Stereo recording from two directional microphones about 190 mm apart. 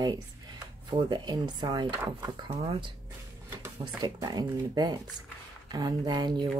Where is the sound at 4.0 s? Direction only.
20° right (ahead or behind).